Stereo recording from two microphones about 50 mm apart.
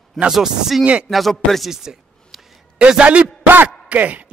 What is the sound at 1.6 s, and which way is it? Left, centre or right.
Speech, centre.